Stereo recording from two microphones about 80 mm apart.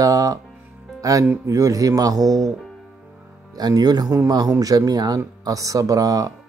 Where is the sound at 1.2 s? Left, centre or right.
Right.